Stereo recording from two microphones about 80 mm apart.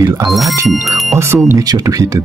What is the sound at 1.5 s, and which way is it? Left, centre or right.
Speech, right.